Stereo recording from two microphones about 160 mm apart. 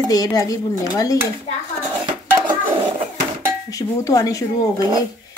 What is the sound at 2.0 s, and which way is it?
Dishes, 30° right (ahead or behind).